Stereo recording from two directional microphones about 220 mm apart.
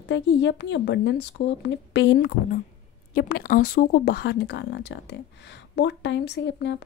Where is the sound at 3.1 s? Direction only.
40° left (ahead or behind).